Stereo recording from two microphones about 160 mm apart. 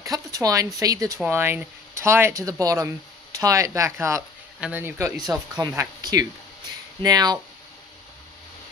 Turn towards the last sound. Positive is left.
turn(degrees=-25)  # may be behind; listen again after turning